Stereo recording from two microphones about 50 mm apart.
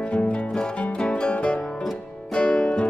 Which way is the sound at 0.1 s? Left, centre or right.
Left.